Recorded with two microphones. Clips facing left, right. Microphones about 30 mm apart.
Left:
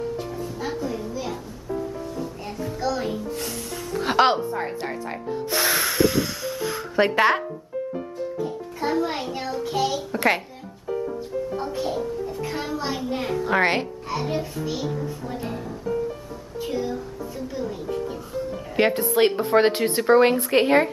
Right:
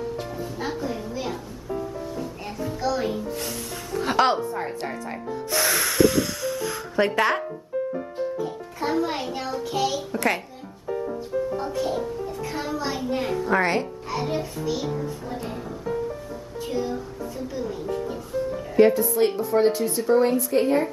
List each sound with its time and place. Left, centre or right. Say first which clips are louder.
0.7 s a woman's voice: left 1 dB; centre
2.4 s a child's voice: even; centre
4.0 s speech: left 2 dB; centre
8.7 s a child's voice: even; centre
12.4 s a child's voice: right 1 dB; centre
13.5 s a woman's voice: left 2 dB; left
14.0 s a child's voice: even; centre
16.7 s a child's voice: right 1 dB; centre
18.8 s speech: right 1 dB; left